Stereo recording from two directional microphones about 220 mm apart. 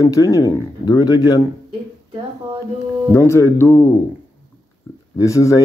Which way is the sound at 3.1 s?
15° left (ahead or behind).